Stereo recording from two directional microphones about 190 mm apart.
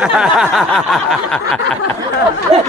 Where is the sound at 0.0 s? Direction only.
5° right (ahead or behind).